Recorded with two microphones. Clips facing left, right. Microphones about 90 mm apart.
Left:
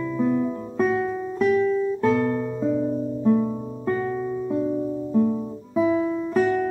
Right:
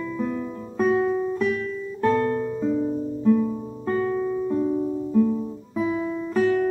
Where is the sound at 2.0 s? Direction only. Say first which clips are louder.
Right 3 dB; 5° left (ahead or behind).